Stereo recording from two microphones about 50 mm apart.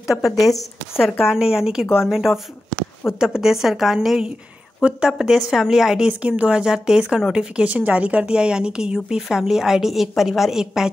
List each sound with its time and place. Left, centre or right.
0.0 s speech: centre
1.2 s speech: centre
4.8 s speech: right
5.1 s speech: centre
6.0 s speech: right
6.6 s speech: centre